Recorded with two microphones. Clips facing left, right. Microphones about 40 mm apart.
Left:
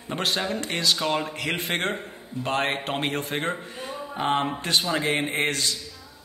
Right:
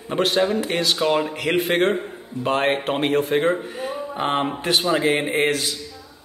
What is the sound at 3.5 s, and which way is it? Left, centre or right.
Speech, right.